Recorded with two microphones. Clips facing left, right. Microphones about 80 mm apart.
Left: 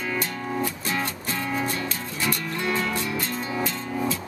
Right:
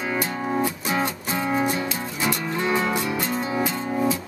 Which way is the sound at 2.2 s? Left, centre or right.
Centre.